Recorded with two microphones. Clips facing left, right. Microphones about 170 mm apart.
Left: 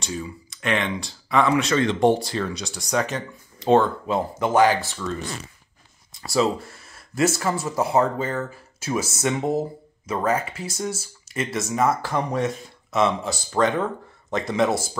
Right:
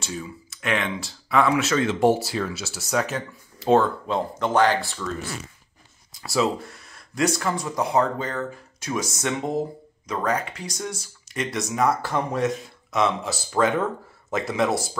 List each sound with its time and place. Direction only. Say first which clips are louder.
0.0 s speech: left 2 dB; 5° right (ahead or behind)
4.4 s speech: left 2 dB; 10° left (ahead or behind)
6.1 s speech: left 2 dB; centre (ahead or behind)